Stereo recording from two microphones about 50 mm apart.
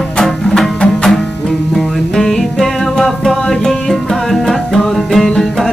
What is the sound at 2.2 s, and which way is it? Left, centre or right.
Music, centre.